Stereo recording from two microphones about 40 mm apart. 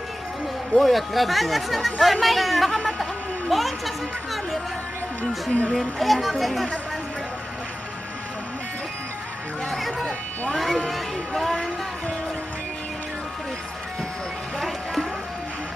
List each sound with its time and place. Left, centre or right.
0.7 s speech: centre
5.5 s speech: left
5.8 s speech: centre
9.7 s a sound: centre
10.5 s speech: centre